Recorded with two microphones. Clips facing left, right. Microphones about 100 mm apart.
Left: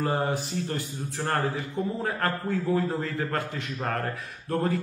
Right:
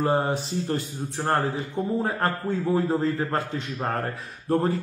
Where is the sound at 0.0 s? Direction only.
30° right (ahead or behind).